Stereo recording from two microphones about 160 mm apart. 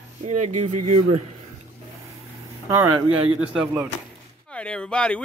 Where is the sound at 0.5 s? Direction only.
45° right (ahead or behind).